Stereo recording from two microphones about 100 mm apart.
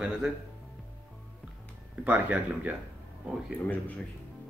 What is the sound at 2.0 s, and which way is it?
Speech, 15° right (ahead or behind).